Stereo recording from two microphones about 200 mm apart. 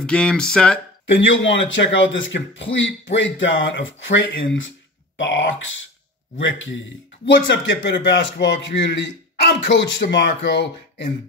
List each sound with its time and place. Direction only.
0.0 s speech: 5° left (ahead or behind)
1.0 s a man's voice: 70° left (ahead or behind)